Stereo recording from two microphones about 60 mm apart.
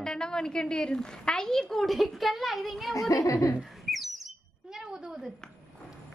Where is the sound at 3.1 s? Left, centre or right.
Left.